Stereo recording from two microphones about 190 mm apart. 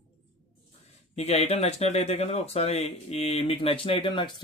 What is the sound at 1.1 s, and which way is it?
Speech, 35° left (ahead or behind).